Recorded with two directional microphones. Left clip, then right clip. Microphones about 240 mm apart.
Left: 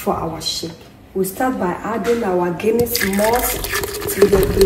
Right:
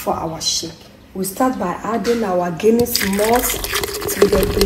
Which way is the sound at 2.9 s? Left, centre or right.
Centre.